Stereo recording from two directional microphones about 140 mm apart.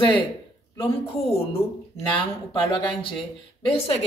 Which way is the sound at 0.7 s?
45° left (ahead or behind).